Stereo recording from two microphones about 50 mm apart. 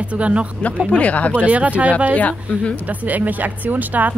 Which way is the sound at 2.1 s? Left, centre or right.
Left.